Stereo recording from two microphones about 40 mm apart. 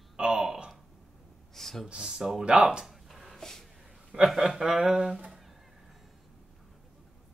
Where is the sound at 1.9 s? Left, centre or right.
Centre.